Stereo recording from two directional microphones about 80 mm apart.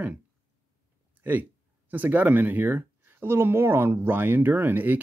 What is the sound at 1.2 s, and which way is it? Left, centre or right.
Speech, right.